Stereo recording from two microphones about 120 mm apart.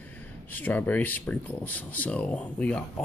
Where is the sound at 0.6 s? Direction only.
15° left (ahead or behind).